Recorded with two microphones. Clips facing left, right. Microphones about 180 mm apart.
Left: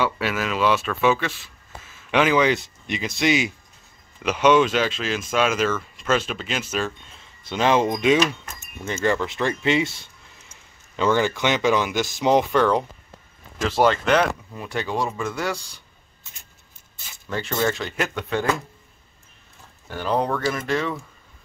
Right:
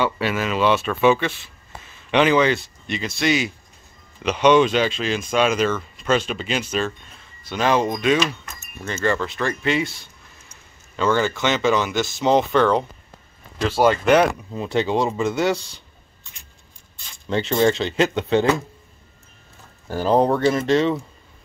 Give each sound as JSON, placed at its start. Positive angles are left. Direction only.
{"t": 0.0, "sound": "speech", "side_deg": 0}
{"t": 4.2, "sound": "speech", "side_deg": 5}
{"t": 7.4, "sound": "speech", "side_deg": 20}
{"t": 11.0, "sound": "speech", "side_deg": 15}
{"t": 13.7, "sound": "speech", "side_deg": -10}
{"t": 14.5, "sound": "speech", "side_deg": -25}
{"t": 17.3, "sound": "speech", "side_deg": -20}
{"t": 19.9, "sound": "speech", "side_deg": -35}